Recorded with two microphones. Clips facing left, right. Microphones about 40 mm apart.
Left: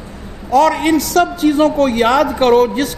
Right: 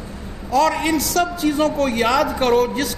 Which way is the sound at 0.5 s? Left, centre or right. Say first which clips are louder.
Left 5 dB; left.